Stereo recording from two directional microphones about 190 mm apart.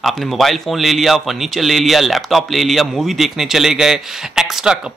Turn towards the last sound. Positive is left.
turn(degrees=-5)  # may be behind; listen again after turning